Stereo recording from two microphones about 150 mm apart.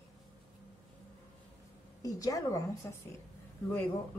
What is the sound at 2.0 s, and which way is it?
A woman's voice, 25° left (ahead or behind).